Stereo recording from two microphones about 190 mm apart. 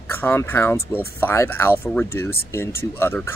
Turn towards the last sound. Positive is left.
turn(degrees=10)  # may be behind; listen again after turning